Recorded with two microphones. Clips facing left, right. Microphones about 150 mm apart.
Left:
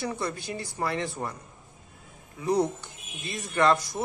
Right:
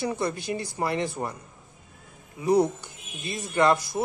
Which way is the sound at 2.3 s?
20° right (ahead or behind).